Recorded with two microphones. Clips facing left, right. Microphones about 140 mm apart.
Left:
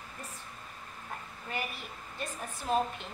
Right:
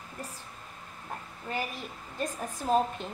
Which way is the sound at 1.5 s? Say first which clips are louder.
Right 4 dB; 35° right (ahead or behind).